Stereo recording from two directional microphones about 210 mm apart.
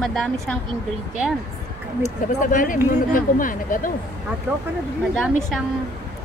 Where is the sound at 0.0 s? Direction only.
Centre (ahead or behind).